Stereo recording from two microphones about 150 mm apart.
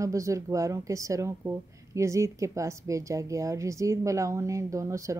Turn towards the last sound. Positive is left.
turn(degrees=-20)  # may be behind; listen again after turning